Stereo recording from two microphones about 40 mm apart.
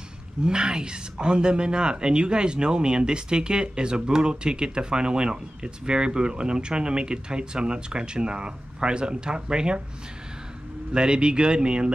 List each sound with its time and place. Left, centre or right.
0.4 s a woman's voice: right
10.9 s a woman's voice: right